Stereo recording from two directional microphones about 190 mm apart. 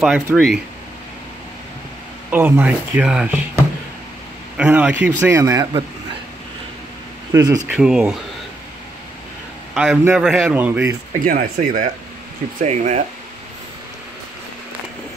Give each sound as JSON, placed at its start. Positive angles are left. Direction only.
{"t": 0.0, "sound": "speech", "side_deg": -5}
{"t": 2.3, "sound": "speech", "side_deg": -10}
{"t": 7.3, "sound": "speech", "side_deg": -20}
{"t": 7.7, "sound": "speech", "side_deg": -5}
{"t": 9.8, "sound": "speech", "side_deg": -5}
{"t": 11.2, "sound": "speech", "side_deg": -50}